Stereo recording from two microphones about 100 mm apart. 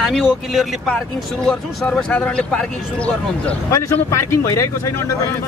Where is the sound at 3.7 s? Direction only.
30° left (ahead or behind).